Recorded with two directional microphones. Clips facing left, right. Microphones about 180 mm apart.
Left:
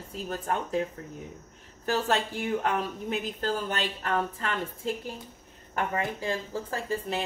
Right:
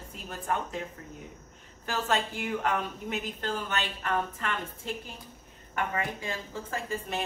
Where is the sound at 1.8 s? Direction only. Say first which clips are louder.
Left 3 dB; 35° left (ahead or behind).